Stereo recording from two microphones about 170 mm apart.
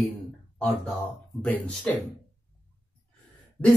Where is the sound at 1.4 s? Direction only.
5° left (ahead or behind).